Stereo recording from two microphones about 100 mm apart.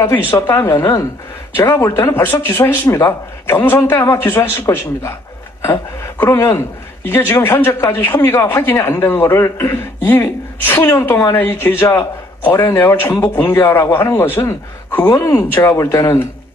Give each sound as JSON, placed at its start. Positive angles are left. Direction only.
{"t": 0.0, "sound": "a man's voice", "side_deg": 25}